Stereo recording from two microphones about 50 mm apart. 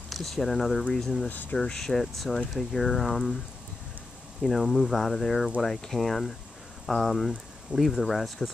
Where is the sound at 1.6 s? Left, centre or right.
Centre.